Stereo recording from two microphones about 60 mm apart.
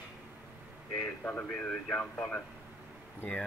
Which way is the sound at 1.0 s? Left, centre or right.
Left.